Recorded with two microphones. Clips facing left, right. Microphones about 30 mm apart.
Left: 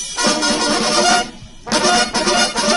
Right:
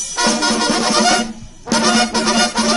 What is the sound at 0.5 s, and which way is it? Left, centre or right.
Music, left.